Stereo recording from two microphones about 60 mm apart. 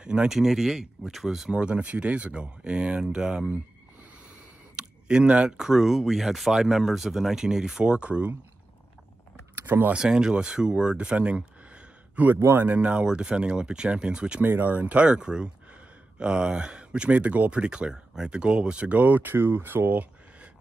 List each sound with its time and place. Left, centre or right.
0.0 s speech: centre
1.5 s speech: centre
4.7 s speech: centre
9.7 s speech: right
9.9 s speech: centre
14.4 s speech: right